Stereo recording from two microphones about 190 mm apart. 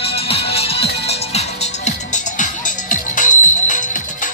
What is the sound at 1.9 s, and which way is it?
Music, 40° left (ahead or behind).